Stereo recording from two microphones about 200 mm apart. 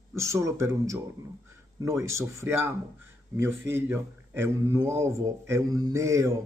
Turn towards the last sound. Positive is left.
turn(degrees=-15)  # may be behind; listen again after turning